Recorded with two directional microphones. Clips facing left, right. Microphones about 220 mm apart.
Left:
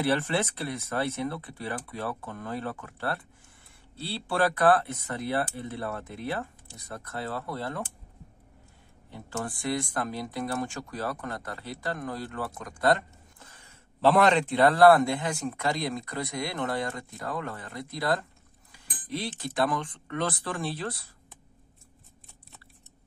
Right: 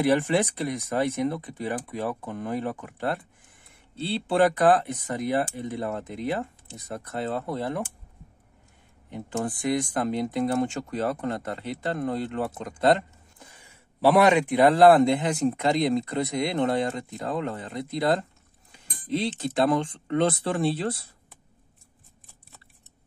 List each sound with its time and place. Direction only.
0.0 s speech: 15° right (ahead or behind)
9.1 s speech: 20° right (ahead or behind)